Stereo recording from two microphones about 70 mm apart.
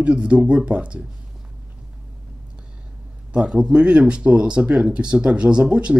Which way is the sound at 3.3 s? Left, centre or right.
Centre.